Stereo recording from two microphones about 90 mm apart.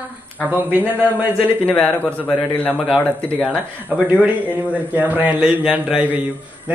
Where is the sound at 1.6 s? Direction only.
15° left (ahead or behind).